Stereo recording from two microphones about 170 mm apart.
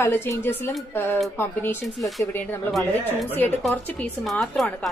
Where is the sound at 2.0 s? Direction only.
Centre (ahead or behind).